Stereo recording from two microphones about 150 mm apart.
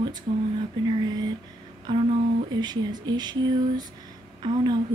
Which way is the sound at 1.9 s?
30° right (ahead or behind).